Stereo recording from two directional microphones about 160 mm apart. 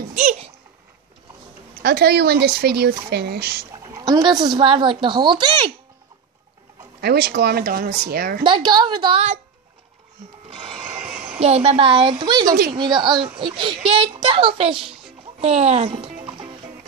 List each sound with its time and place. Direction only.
0.2 s babbling: 45° right (ahead or behind)
1.8 s speech: 90° right
3.7 s speech: 20° right (ahead or behind)
7.0 s speech: 80° right
8.5 s speech: 30° right (ahead or behind)
11.4 s speech: 40° right (ahead or behind)
15.4 s speech: 45° right (ahead or behind)